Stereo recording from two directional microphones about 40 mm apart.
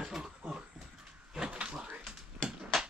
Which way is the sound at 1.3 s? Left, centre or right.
Right.